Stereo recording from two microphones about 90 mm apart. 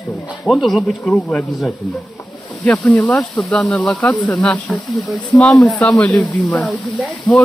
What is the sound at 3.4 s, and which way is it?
Speech, centre (ahead or behind).